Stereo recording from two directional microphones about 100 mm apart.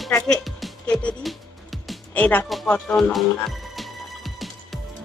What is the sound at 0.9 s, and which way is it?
Speech, 10° left (ahead or behind).